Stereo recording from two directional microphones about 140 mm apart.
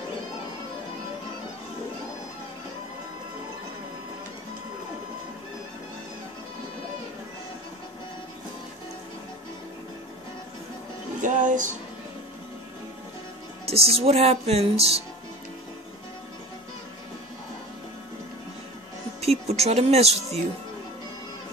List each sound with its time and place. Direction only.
11.1 s music: 65° right (ahead or behind)
13.7 s speech: 45° right (ahead or behind)
19.2 s speech: 50° right (ahead or behind)